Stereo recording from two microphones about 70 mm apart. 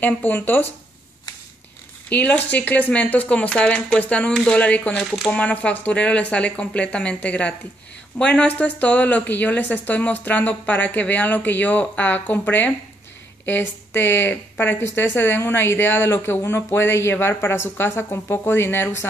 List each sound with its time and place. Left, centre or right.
0.0 s speech: left
2.0 s speech: left
4.9 s speech: centre
5.3 s speech: centre; by 19.0 s left